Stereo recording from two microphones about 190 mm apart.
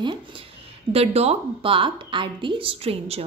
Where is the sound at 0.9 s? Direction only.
30° right (ahead or behind).